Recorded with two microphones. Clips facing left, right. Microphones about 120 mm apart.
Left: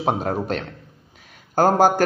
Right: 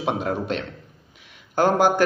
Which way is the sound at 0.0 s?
40° left (ahead or behind).